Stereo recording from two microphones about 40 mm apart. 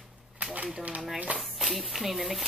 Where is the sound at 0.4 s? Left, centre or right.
Right.